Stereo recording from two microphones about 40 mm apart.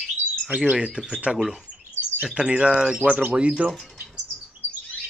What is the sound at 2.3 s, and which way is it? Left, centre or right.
Speech, right.